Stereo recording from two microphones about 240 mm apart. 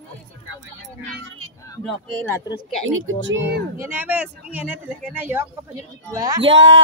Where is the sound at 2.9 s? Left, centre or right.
Right.